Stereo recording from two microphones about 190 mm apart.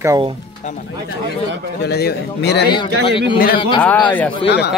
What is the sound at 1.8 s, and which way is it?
Speech, 60° left (ahead or behind).